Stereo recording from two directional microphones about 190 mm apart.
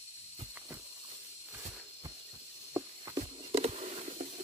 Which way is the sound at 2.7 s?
20° right (ahead or behind).